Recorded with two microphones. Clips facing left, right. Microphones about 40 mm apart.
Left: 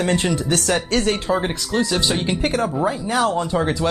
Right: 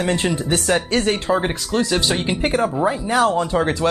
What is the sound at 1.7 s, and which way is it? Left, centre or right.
Speech, centre.